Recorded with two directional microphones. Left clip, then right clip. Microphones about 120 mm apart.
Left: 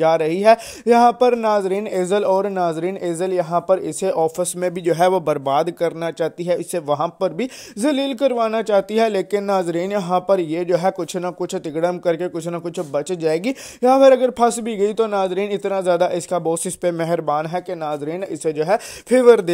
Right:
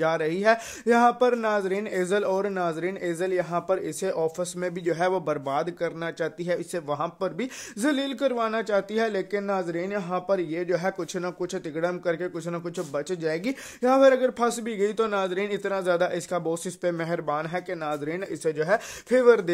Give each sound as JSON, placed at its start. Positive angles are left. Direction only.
{"t": 0.0, "sound": "speech", "side_deg": 45}